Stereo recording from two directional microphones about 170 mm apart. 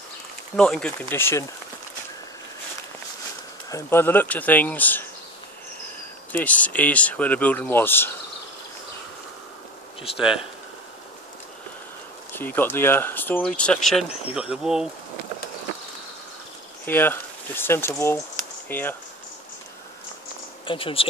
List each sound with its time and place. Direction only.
0.6 s speech: 5° left (ahead or behind)
3.7 s speech: 15° left (ahead or behind)
6.3 s speech: 10° left (ahead or behind)
12.3 s speech: 10° left (ahead or behind)
16.8 s speech: 10° left (ahead or behind)
20.6 s speech: 30° left (ahead or behind)